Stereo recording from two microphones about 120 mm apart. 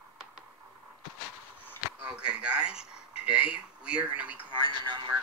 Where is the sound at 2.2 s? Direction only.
10° right (ahead or behind).